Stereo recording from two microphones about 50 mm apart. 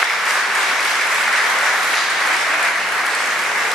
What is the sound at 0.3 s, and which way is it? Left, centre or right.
Applause, centre.